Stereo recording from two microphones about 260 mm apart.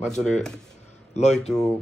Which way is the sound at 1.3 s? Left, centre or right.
Centre.